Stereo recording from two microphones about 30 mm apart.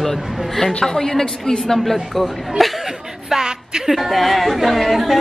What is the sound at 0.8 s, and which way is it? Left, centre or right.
Speech, centre.